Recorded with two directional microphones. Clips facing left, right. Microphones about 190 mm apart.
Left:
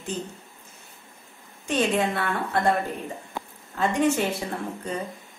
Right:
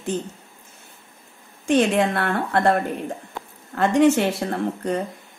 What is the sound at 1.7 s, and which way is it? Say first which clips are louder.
Speech: right 5 dB; 65° right (ahead or behind).